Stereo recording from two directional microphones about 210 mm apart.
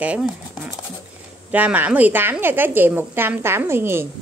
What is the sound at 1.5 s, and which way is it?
A woman's voice, 10° right (ahead or behind).